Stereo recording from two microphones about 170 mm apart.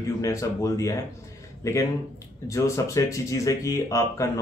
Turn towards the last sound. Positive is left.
turn(degrees=15)  # may be behind; listen again after turning